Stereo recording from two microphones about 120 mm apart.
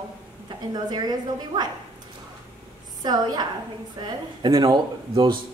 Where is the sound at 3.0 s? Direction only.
35° right (ahead or behind).